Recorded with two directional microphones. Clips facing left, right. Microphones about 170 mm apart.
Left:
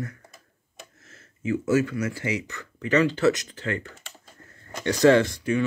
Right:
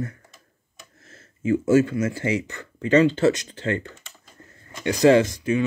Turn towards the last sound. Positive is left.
turn(degrees=-20)  # may be behind; listen again after turning